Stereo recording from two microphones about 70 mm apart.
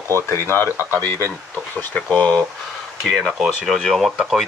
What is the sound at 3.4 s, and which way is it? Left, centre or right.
Speech, centre.